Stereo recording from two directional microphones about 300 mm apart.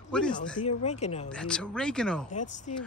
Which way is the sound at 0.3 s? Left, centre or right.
Left.